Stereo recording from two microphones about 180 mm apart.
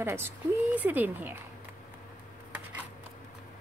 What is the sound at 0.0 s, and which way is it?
Speech, 15° right (ahead or behind).